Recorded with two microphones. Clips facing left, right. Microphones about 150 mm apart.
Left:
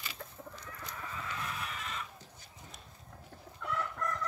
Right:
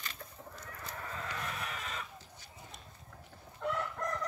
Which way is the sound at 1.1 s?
50° right (ahead or behind).